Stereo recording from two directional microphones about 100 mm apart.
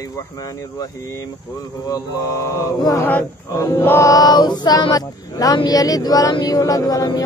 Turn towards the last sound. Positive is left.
turn(degrees=40)  # may be behind; listen again after turning